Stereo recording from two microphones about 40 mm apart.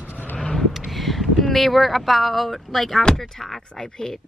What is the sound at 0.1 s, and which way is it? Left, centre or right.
Vehicle, left.